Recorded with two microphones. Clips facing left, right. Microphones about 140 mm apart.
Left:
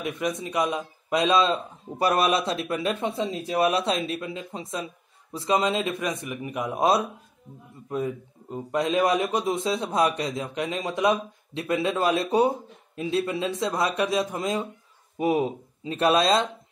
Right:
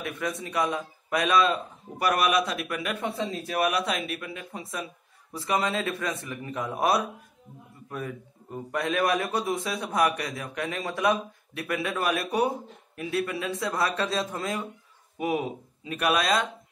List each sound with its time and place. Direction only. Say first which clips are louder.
0.0 s a man's voice: left 4 dB; 15° left (ahead or behind)